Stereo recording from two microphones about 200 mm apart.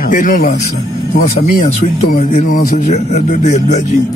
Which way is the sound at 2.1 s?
40° left (ahead or behind).